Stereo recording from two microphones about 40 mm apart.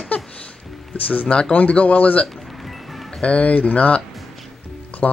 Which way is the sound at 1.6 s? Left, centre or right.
Left.